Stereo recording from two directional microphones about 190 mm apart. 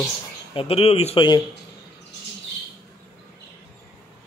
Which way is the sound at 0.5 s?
30° left (ahead or behind).